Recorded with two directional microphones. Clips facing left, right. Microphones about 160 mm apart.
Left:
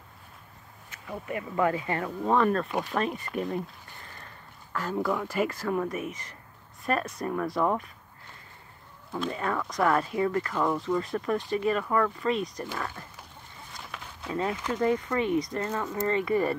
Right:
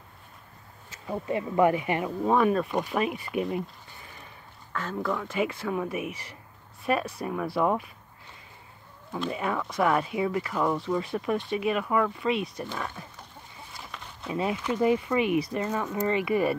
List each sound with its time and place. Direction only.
1.0 s speech: 25° right (ahead or behind); by 4.3 s 10° right (ahead or behind)
4.7 s speech: 10° left (ahead or behind)
9.1 s speech: 5° right (ahead or behind)
13.7 s a sound: centre (ahead or behind)
14.3 s speech: 15° right (ahead or behind)